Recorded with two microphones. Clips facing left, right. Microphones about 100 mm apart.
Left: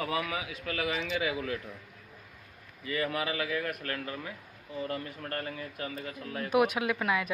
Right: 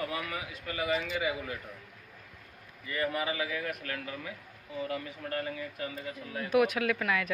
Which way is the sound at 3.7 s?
50° left (ahead or behind).